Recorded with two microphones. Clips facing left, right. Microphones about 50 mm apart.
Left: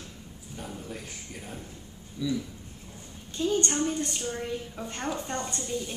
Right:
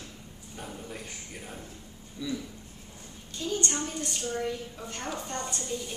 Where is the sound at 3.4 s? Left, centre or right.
Left.